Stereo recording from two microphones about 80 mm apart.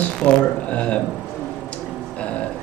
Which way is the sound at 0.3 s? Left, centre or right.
Centre.